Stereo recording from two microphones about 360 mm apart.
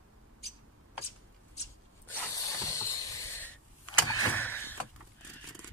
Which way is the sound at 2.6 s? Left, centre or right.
Centre.